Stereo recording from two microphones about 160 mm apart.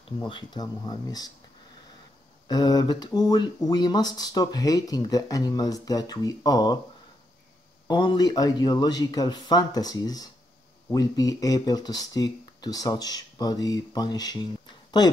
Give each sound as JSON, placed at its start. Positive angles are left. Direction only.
{"t": 0.2, "sound": "speech", "side_deg": 30}
{"t": 2.4, "sound": "speech", "side_deg": 25}
{"t": 7.9, "sound": "speech", "side_deg": 30}